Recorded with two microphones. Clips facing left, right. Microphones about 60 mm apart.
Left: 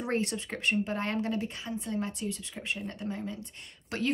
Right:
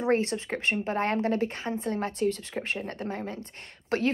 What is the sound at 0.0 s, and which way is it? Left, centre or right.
A woman's voice, right.